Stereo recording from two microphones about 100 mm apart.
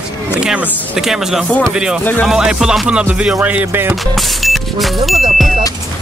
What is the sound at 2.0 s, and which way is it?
Speech, 20° left (ahead or behind).